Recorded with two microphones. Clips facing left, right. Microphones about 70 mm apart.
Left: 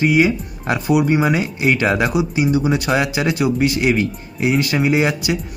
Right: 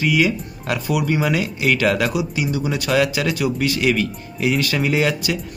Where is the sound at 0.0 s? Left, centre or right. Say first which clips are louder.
Left 3 dB; left.